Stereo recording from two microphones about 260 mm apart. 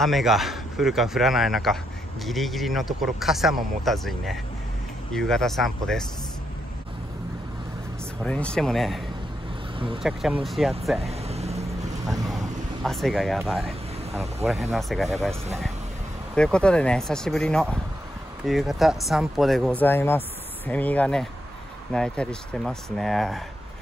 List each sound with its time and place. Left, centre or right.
0.0 s speech: centre
8.2 s speech: centre
10.0 s speech: centre
11.0 s vehicle: right
12.8 s speech: centre
16.3 s speech: centre